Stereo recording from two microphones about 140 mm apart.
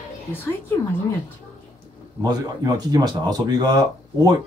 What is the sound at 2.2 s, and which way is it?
Speech, 30° right (ahead or behind).